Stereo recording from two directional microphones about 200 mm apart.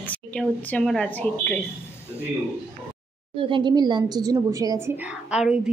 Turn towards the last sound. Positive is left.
turn(degrees=-5)  # may be behind; listen again after turning